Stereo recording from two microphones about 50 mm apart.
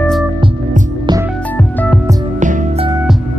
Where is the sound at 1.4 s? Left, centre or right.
Left.